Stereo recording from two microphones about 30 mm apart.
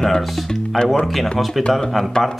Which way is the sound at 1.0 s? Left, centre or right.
Centre.